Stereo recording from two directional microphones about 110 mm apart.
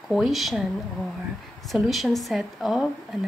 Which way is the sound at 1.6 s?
Centre (ahead or behind).